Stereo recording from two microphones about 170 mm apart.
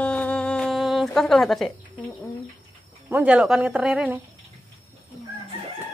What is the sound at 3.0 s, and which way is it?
Speech, 10° right (ahead or behind).